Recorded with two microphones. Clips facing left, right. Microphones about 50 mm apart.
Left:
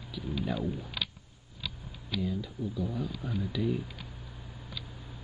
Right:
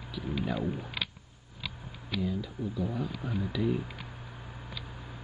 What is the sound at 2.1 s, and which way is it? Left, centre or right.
Speech, centre.